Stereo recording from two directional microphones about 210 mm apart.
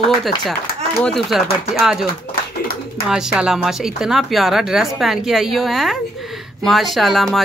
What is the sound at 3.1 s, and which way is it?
Speech, 5° right (ahead or behind).